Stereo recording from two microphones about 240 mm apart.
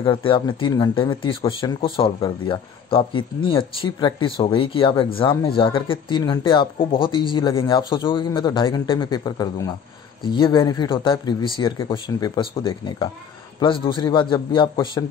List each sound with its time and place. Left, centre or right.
0.0 s speech: left